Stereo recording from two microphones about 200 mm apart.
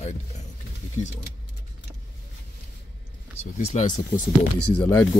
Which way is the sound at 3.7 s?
35° left (ahead or behind).